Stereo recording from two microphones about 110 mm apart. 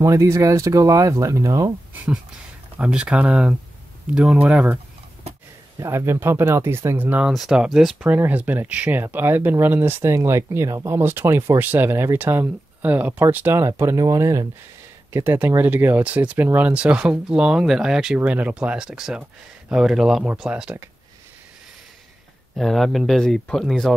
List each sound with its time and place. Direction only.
0.0 s speech: 30° right (ahead or behind)
2.8 s speech: 5° right (ahead or behind)
5.8 s speech: 25° right (ahead or behind)
15.1 s speech: 20° right (ahead or behind)
22.6 s speech: centre (ahead or behind)